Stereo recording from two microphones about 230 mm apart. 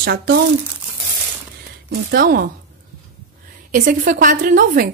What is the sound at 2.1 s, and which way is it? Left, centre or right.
Speech, right.